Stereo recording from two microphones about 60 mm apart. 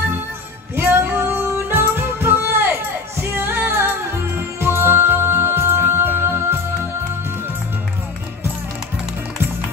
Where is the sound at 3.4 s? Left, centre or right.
Right.